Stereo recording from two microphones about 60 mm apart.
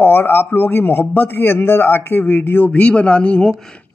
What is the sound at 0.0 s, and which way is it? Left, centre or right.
A man's voice, left.